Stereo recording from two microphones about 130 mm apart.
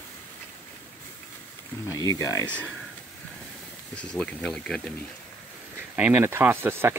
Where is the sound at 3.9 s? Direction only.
10° left (ahead or behind).